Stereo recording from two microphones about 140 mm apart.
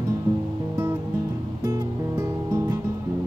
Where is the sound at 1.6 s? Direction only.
25° right (ahead or behind).